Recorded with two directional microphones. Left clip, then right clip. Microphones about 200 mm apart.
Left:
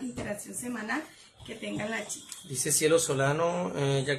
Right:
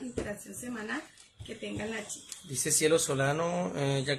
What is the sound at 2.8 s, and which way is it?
Speech, 25° right (ahead or behind).